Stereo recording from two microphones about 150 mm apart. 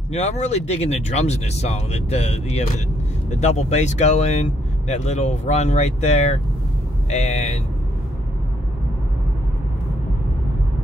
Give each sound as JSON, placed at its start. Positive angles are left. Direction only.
{"t": 0.1, "sound": "speech", "side_deg": 45}